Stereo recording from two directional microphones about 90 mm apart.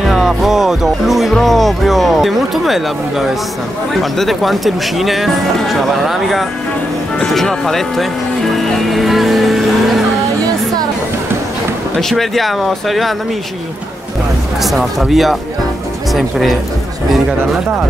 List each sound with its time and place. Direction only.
0.0 s speech: 5° right (ahead or behind)
12.0 s speech: 5° left (ahead or behind)
14.6 s speech: centre (ahead or behind)